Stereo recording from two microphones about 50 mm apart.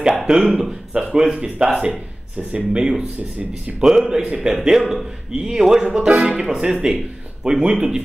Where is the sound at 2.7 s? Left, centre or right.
Centre.